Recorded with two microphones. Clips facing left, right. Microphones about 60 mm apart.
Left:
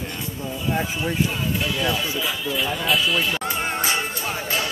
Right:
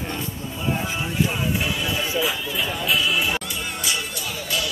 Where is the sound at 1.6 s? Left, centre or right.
Centre.